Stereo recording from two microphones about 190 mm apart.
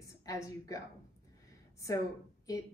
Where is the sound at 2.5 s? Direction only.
15° left (ahead or behind).